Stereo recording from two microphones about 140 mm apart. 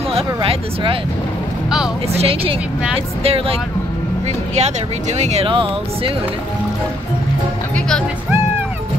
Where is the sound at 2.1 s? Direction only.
45° right (ahead or behind).